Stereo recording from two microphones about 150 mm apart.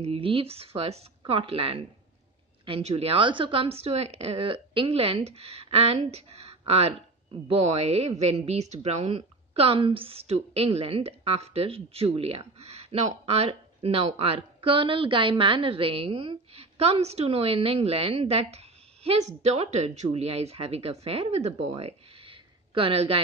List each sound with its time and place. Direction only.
0.0 s a woman's voice: 40° right (ahead or behind)